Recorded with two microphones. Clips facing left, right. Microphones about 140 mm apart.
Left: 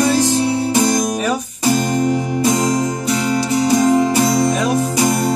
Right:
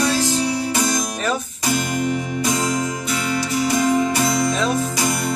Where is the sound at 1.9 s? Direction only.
35° left (ahead or behind).